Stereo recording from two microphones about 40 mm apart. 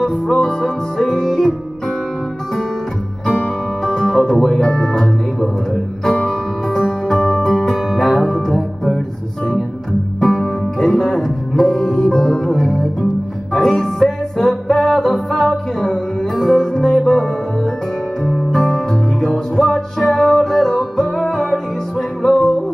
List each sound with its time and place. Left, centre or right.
0.3 s music: centre
3.3 s music: centre
6.0 s music: centre
10.2 s music: centre